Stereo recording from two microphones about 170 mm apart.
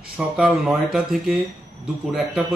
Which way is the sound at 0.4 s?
Centre (ahead or behind).